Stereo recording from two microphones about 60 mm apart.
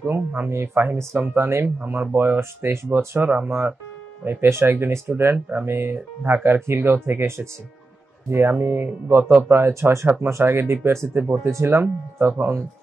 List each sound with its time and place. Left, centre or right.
0.5 s speech: right
1.8 s speech: right
5.0 s speech: right